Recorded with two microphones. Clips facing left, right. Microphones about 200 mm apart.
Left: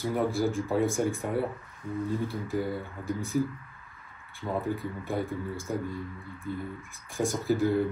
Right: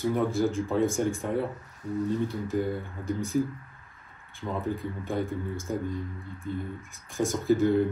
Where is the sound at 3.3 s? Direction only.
10° left (ahead or behind).